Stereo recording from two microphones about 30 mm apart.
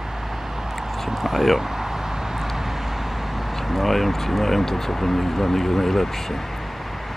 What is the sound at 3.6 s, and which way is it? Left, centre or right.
Speech, centre.